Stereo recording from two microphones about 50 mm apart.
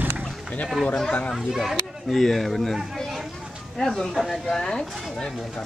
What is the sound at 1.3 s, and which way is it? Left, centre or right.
A child's voice, centre.